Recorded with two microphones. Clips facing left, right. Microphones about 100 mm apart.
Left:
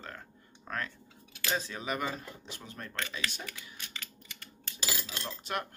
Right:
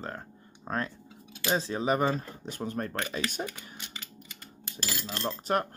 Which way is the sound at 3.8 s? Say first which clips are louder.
Right 2 dB; 20° right (ahead or behind).